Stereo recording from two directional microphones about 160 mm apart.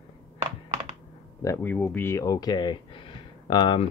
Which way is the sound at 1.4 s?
15° left (ahead or behind).